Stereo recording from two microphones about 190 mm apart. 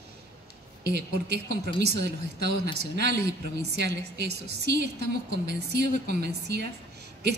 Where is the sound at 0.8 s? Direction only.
60° right (ahead or behind).